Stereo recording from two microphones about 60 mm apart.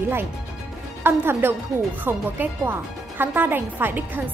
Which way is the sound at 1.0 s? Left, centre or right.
Right.